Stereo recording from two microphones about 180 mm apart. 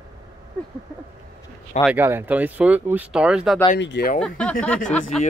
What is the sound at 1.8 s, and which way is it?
Speech, 10° right (ahead or behind).